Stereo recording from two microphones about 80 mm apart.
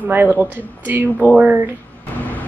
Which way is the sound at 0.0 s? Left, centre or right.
Right.